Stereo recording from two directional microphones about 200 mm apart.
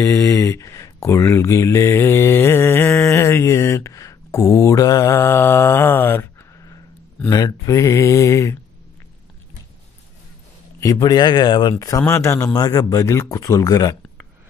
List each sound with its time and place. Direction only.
0.0 s speech: 15° left (ahead or behind)
10.8 s speech: 20° left (ahead or behind)